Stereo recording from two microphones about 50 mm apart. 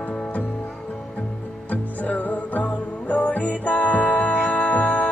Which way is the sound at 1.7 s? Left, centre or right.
Left.